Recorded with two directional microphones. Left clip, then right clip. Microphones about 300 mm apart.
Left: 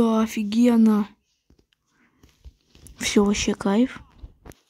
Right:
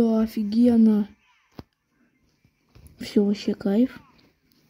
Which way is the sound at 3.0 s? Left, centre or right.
Centre.